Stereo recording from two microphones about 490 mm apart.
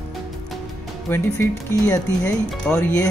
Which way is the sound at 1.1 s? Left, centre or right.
Centre.